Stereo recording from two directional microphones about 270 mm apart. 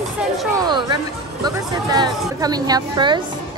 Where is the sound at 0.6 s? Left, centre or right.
Centre.